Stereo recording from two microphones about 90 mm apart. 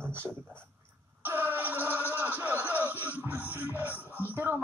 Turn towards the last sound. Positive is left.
turn(degrees=-20)  # may be behind; listen again after turning